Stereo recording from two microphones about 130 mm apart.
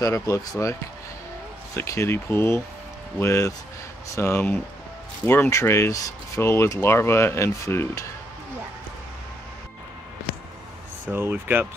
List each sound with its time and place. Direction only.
0.0 s speech: 25° left (ahead or behind)
1.8 s speech: 20° left (ahead or behind)
11.1 s speech: 15° right (ahead or behind)